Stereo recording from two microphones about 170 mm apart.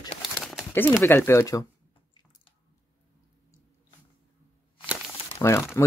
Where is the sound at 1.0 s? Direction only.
15° left (ahead or behind).